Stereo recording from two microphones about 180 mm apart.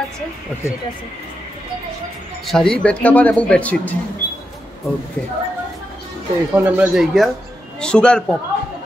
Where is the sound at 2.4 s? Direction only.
5° left (ahead or behind).